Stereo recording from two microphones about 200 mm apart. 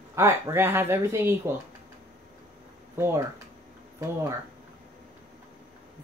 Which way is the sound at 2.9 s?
15° right (ahead or behind).